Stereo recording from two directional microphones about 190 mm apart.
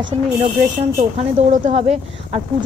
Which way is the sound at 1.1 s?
35° right (ahead or behind).